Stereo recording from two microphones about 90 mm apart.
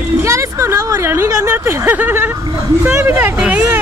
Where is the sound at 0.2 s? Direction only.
35° right (ahead or behind).